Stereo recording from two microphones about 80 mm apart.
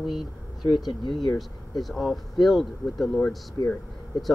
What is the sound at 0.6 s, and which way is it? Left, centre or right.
Speech, left.